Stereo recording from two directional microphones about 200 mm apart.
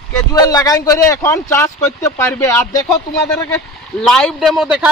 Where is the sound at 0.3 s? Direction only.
15° left (ahead or behind); by 4.9 s centre (ahead or behind).